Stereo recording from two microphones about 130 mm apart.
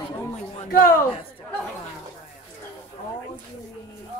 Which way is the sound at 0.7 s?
90° left.